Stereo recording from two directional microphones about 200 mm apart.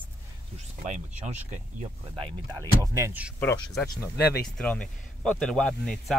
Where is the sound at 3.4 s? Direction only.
10° left (ahead or behind).